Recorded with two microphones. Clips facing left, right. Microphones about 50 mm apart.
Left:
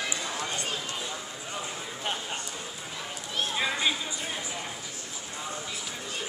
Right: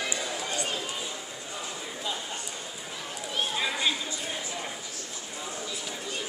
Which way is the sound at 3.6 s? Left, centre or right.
Centre.